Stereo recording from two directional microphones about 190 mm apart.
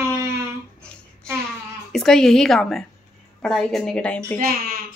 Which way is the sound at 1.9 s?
Centre (ahead or behind).